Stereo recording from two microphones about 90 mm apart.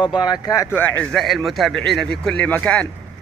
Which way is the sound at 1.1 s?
Centre (ahead or behind).